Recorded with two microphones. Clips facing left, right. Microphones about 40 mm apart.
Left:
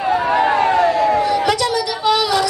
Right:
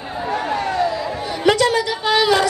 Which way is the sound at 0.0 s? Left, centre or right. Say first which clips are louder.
Left 10 dB; left.